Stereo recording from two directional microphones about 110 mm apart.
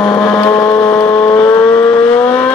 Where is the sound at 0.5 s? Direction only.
35° left (ahead or behind).